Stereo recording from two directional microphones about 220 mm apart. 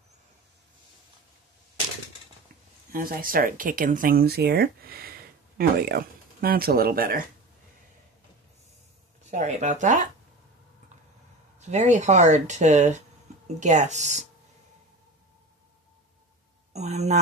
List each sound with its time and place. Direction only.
2.9 s speech: 40° right (ahead or behind)
9.2 s speech: 30° right (ahead or behind)
11.6 s speech: 30° right (ahead or behind)
16.7 s speech: 30° right (ahead or behind)